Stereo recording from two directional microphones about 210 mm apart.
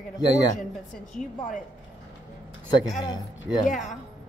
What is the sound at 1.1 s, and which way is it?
Speech, 35° left (ahead or behind).